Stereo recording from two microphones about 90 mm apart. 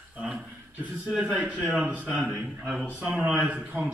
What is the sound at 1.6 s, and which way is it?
A man's voice, 15° right (ahead or behind).